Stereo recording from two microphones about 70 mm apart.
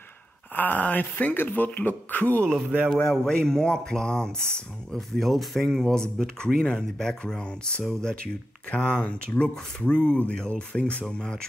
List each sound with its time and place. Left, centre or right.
0.6 s speech: left
2.9 s speech: centre